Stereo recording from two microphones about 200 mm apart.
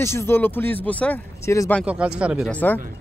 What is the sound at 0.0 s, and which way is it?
Speech, 15° left (ahead or behind).